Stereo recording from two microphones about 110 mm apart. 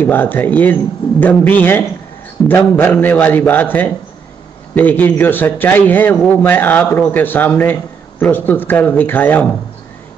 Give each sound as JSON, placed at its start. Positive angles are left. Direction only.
{"t": 0.0, "sound": "a man's voice", "side_deg": 20}